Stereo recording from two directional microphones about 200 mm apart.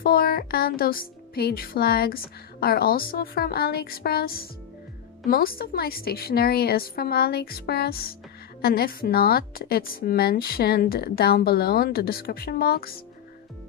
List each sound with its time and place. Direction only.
0.0 s speech: 50° left (ahead or behind)